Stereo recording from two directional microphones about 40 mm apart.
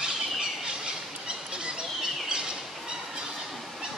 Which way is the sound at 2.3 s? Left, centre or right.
Right.